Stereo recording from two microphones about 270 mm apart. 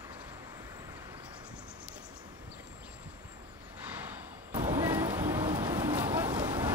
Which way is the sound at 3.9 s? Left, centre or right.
Centre.